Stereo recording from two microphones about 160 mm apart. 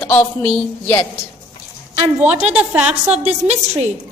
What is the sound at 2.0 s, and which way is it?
A woman's voice, 10° right (ahead or behind).